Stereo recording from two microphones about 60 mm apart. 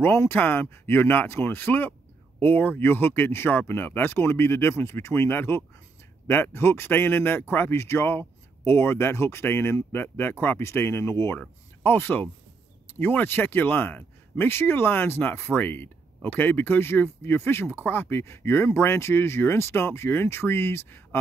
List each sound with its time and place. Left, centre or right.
0.3 s speech: left
11.3 s speech: left